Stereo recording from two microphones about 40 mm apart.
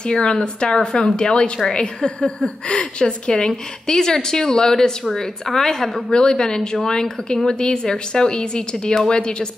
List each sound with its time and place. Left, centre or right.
0.0 s a woman's voice: left